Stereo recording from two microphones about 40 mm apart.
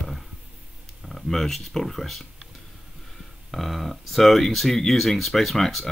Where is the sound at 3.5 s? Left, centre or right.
Centre.